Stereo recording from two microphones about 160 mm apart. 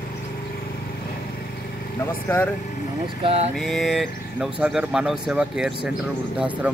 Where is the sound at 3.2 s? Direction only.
40° right (ahead or behind).